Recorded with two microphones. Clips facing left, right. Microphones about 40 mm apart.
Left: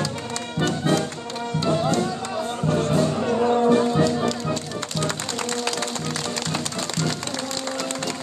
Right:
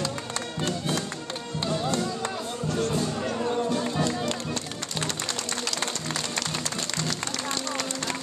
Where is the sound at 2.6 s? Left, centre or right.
Left.